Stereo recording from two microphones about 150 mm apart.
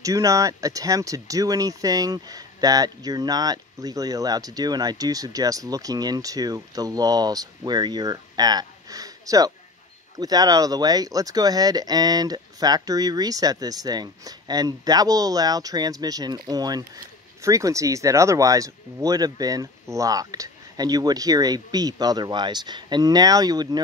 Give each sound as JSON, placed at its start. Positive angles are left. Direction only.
{"t": 0.0, "sound": "speech", "side_deg": -20}